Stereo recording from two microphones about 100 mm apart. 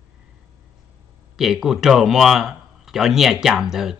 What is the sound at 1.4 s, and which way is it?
Speech, 5° right (ahead or behind).